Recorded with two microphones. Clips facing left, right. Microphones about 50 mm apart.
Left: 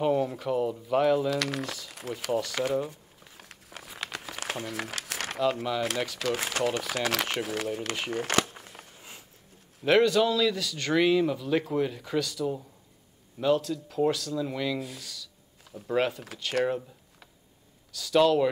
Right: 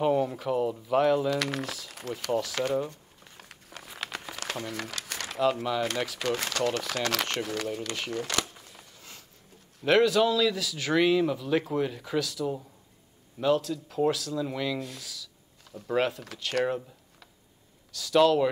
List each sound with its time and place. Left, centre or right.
0.0 s speech: centre
4.4 s a sound: centre
5.6 s a man's voice: centre
6.3 s a man's voice: centre
8.1 s a sound: left
9.8 s a man's voice: centre
17.9 s a man's voice: centre